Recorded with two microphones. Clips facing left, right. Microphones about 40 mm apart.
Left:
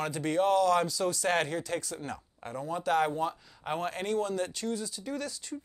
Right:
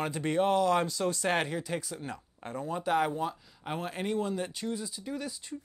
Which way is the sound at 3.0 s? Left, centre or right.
Centre.